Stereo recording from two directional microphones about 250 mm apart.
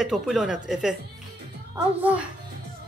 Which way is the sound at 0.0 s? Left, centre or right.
Centre.